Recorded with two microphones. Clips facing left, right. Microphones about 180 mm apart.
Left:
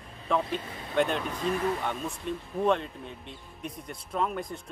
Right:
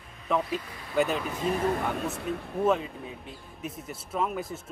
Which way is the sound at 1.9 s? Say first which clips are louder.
Right 3 dB; 70° right (ahead or behind).